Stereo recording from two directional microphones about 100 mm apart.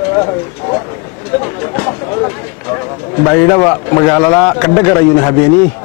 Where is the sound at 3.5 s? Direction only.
25° left (ahead or behind).